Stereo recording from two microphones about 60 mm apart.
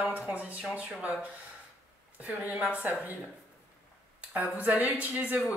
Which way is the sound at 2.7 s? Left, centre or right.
Right.